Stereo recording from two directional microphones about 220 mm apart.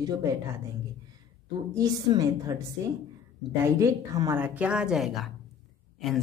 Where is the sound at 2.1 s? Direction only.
20° right (ahead or behind).